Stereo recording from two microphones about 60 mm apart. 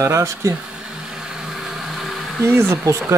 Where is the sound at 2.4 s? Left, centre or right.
Right.